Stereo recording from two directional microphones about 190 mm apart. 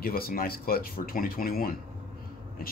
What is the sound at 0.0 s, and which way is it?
A man's voice, 50° left (ahead or behind).